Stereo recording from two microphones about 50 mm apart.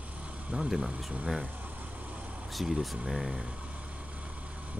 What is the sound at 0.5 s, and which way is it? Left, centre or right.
Speech, right.